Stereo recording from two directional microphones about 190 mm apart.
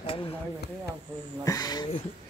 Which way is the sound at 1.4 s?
20° left (ahead or behind).